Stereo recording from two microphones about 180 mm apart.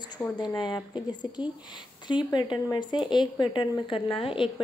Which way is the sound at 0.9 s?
25° left (ahead or behind).